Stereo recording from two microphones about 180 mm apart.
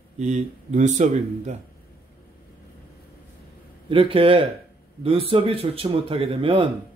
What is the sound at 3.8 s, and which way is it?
Speech, 30° right (ahead or behind).